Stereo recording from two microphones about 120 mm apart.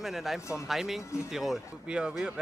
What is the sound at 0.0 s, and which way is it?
Speech, centre (ahead or behind).